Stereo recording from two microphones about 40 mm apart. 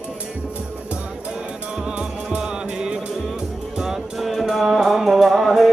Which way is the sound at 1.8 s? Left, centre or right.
Right.